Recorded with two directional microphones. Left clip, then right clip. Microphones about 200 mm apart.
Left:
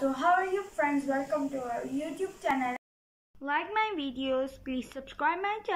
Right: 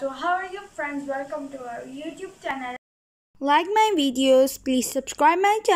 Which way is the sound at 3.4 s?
35° right (ahead or behind).